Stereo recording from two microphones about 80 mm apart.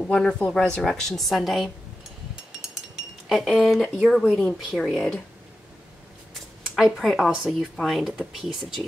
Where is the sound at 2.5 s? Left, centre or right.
Centre.